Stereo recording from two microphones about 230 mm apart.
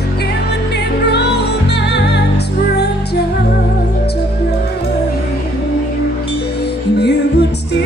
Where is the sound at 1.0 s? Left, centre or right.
Left.